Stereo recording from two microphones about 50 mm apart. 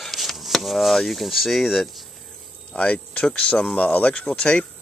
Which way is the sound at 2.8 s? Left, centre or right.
Left.